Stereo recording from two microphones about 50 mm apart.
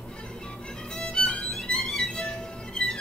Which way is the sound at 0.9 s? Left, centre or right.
Centre.